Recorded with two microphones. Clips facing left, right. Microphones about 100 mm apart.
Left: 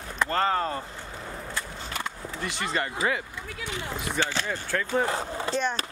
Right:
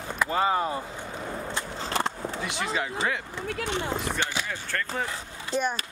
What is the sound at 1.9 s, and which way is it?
Skateboard, 30° right (ahead or behind).